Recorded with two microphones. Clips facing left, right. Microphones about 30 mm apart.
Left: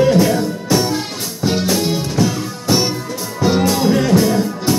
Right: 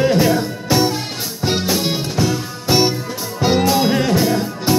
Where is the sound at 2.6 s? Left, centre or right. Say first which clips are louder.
Right 1 dB; centre.